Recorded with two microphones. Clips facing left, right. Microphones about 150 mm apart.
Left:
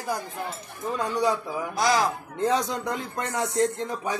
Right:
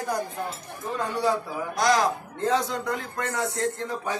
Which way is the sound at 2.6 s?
15° left (ahead or behind).